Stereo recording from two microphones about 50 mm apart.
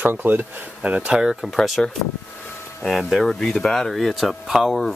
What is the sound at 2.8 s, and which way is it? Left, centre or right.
Speech, centre.